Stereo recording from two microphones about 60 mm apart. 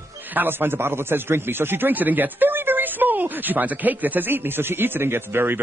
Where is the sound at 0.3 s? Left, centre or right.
Right.